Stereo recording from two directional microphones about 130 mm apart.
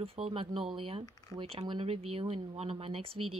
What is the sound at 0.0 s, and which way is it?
Speech, 45° right (ahead or behind).